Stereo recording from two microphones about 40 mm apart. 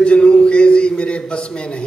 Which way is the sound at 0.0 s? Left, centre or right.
Left.